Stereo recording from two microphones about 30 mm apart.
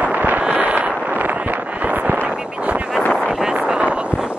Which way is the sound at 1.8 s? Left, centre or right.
Right.